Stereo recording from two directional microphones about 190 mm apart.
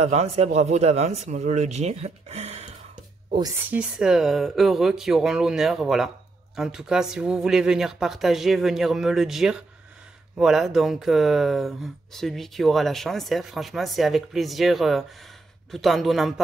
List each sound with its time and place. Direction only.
0.0 s speech: 35° right (ahead or behind)
3.7 s speech: 5° right (ahead or behind)